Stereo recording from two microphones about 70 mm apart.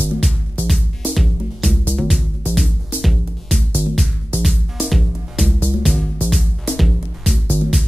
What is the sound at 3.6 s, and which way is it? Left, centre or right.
Music, left.